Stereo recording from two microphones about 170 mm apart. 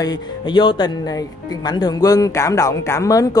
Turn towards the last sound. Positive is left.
turn(degrees=20)  # may be behind; listen again after turning